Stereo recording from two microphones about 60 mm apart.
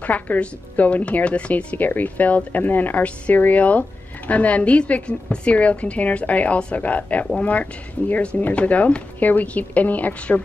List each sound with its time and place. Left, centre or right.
0.0 s a woman's voice: left